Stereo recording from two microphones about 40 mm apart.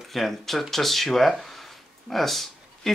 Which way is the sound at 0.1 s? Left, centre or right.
Centre.